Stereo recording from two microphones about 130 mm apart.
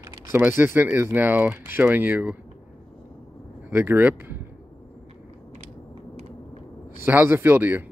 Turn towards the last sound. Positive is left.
turn(degrees=-15)  # may be behind; listen again after turning